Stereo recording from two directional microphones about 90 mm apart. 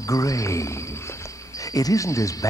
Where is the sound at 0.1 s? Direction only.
40° left (ahead or behind).